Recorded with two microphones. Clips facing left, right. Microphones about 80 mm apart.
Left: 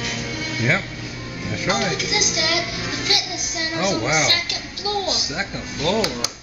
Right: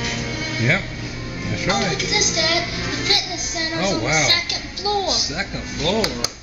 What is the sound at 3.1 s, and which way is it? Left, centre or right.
Music, centre.